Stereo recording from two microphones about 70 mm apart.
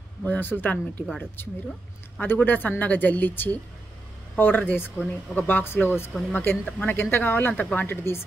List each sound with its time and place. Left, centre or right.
0.2 s speech: left
2.1 s speech: left